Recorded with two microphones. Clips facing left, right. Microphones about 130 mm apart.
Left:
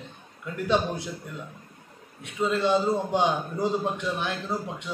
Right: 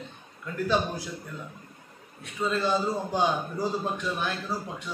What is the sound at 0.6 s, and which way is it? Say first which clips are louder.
Speech: left 2 dB; 20° left (ahead or behind).